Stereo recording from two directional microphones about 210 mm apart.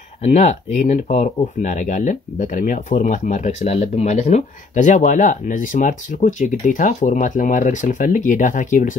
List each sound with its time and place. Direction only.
0.2 s speech: 35° left (ahead or behind)